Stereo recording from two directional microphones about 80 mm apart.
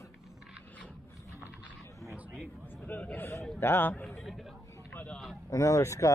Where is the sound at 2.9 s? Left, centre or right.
Left.